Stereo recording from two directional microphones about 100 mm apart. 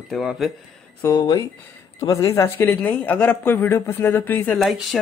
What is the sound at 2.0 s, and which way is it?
Speech, 30° left (ahead or behind).